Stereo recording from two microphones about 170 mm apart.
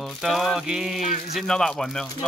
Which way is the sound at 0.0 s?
Centre (ahead or behind).